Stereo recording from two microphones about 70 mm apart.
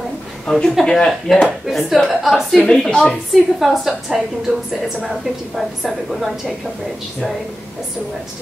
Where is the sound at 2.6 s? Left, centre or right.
Centre.